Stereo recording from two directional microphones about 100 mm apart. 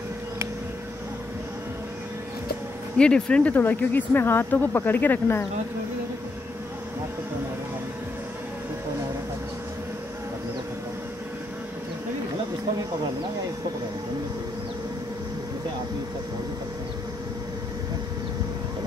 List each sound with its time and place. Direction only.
3.0 s speech: 10° left (ahead or behind)